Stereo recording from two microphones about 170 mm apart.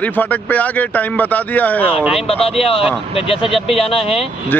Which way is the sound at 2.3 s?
35° left (ahead or behind).